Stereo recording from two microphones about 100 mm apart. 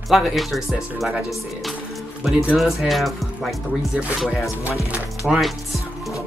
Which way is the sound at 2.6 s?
Centre (ahead or behind).